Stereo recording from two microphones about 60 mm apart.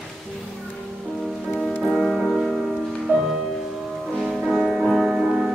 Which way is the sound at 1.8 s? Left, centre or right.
Centre.